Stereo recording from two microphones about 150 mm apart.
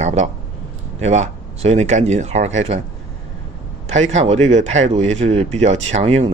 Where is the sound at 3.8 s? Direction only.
50° right (ahead or behind).